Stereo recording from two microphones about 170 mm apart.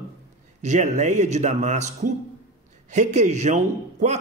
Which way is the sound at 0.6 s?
45° right (ahead or behind).